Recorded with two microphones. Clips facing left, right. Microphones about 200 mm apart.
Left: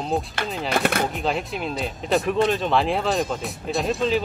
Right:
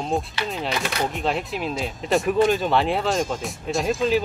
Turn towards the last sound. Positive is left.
turn(degrees=0)  # may be behind; listen again after turning